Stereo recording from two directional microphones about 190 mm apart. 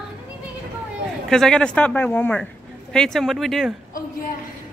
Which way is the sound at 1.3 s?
5° left (ahead or behind).